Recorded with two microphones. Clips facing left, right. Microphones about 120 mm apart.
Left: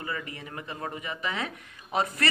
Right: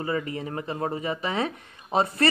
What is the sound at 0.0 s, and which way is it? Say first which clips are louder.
Speech: right 8 dB; 30° right (ahead or behind).